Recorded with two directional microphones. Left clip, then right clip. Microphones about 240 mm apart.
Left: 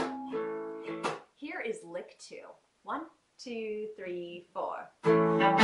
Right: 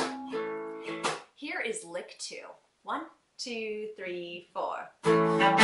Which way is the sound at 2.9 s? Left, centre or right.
Centre.